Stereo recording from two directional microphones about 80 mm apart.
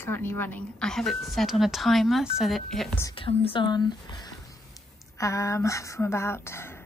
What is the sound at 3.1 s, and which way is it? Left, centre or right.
Speech, left.